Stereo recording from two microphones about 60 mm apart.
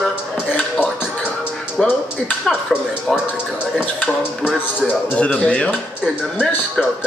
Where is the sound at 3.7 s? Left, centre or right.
Centre.